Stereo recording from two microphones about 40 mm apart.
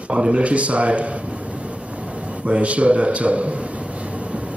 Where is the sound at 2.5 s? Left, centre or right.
Right.